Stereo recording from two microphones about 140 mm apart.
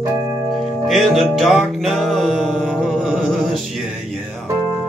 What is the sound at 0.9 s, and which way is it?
Music, centre (ahead or behind).